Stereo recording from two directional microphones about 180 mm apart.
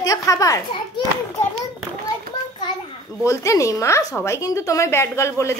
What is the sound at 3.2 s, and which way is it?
A woman's voice, 15° left (ahead or behind).